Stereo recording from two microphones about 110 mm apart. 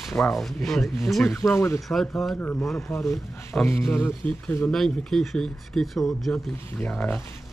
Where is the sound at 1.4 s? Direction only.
25° left (ahead or behind).